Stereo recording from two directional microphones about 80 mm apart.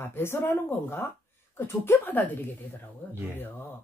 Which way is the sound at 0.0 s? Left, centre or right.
Left.